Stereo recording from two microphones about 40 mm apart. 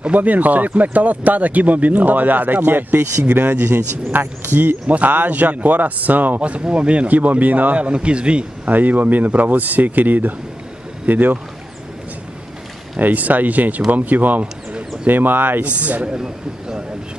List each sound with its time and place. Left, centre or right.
0.0 s speech: right
3.5 s speech: right
4.8 s speech: right
6.6 s speech: right
7.7 s a man's voice: right
8.6 s speech: right
13.0 s speech: right
15.6 s speech: right
16.2 s speech: centre